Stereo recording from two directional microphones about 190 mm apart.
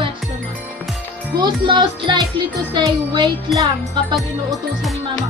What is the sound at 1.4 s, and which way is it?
Music, 25° right (ahead or behind).